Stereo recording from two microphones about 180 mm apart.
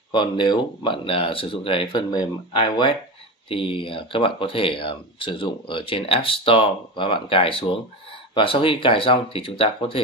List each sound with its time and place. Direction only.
0.1 s speech: 25° left (ahead or behind)